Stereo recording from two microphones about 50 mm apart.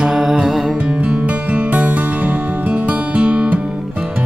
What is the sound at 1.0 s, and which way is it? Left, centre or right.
Music, right.